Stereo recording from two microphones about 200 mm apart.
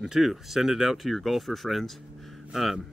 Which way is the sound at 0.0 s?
Centre (ahead or behind).